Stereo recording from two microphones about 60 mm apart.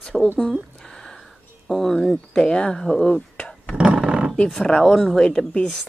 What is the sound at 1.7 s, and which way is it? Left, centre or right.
Speech, centre.